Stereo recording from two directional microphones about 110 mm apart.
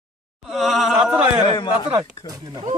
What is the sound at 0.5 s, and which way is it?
Chant, centre (ahead or behind).